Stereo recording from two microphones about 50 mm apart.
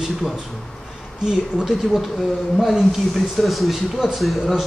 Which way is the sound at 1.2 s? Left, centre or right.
Centre.